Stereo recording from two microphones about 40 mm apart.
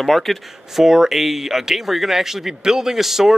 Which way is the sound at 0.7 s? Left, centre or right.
Centre.